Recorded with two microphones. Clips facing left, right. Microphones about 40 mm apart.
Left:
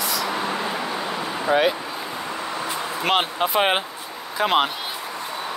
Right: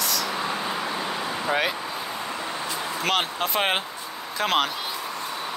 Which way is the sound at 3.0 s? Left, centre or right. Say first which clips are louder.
Left 4 dB; centre.